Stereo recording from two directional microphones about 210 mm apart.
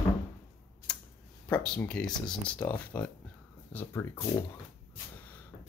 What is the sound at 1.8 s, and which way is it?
Speech, 5° left (ahead or behind).